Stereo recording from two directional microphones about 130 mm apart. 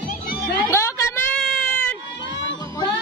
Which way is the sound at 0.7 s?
20° left (ahead or behind).